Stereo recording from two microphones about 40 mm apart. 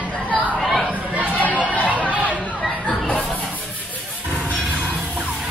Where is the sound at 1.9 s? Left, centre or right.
Right.